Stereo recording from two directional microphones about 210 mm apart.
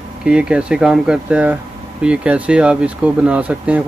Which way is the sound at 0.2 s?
5° right (ahead or behind).